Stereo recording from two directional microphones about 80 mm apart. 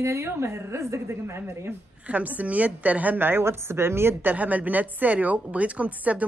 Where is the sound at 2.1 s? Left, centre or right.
Centre.